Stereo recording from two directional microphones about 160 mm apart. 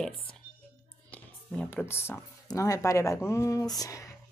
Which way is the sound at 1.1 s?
10° left (ahead or behind).